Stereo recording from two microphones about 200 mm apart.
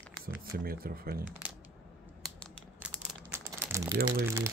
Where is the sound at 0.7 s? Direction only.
50° right (ahead or behind).